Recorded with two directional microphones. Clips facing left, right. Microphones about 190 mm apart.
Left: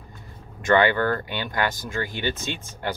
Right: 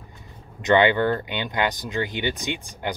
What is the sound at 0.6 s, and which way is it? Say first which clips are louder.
Speech: right 1 dB; 20° right (ahead or behind).